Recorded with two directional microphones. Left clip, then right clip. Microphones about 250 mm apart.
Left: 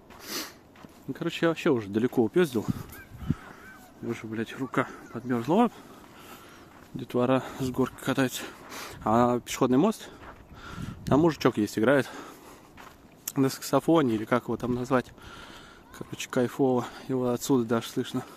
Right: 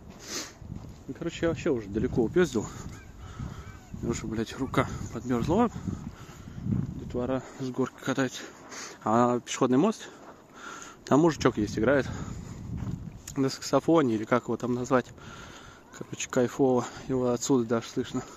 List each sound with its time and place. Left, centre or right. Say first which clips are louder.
1.2 s speech: left 3 dB; left
2.1 s speech: even; centre
4.1 s speech: right 1 dB; centre
7.1 s speech: left 6 dB; left
9.0 s speech: left 1 dB; centre
10.6 s a sound: right 1 dB; centre
11.6 s speech: left 2 dB; centre
16.1 s speech: right 1 dB; centre